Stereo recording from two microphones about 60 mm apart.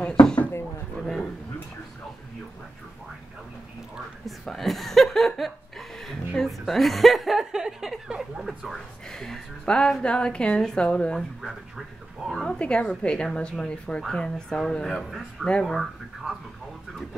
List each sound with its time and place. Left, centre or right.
0.9 s a sound: centre
4.5 s speech: centre
8.7 s speech: centre
11.1 s speech: centre
12.4 s speech: centre